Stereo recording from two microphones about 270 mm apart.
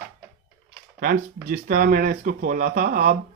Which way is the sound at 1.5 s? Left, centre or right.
Right.